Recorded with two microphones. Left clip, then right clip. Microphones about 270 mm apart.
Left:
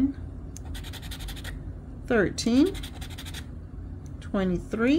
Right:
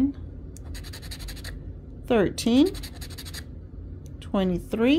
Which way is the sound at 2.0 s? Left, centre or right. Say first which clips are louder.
Right 2 dB; centre.